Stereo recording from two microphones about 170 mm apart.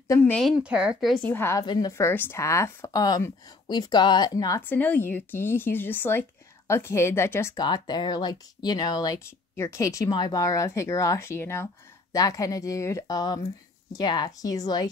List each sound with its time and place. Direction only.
0.1 s speech: 10° left (ahead or behind); by 1.1 s 5° right (ahead or behind)
1.1 s speech: 10° left (ahead or behind)